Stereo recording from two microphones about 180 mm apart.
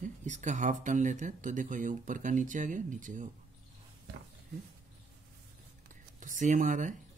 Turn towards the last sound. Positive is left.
turn(degrees=-45)  # may be behind; listen again after turning